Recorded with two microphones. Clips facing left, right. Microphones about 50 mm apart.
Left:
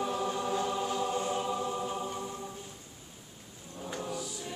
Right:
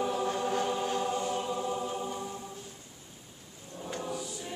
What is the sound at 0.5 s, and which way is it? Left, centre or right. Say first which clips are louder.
Music: right 1 dB; right.